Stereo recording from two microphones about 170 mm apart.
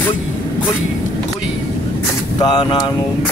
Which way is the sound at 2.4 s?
25° left (ahead or behind).